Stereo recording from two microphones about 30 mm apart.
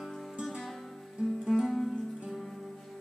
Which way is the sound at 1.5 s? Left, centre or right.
Centre.